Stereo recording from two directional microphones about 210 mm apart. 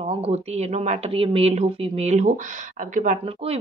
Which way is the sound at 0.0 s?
30° right (ahead or behind).